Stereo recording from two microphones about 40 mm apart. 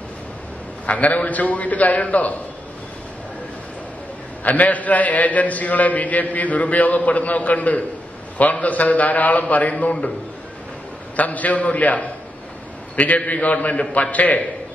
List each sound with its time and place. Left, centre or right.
0.8 s a man's voice: left
4.5 s a man's voice: left
11.1 s a man's voice: left